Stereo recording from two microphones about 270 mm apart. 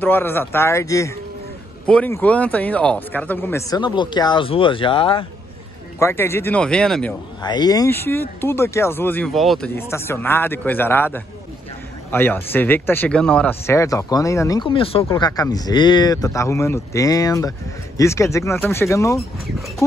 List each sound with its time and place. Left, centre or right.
0.0 s speech: centre
7.4 s speech: centre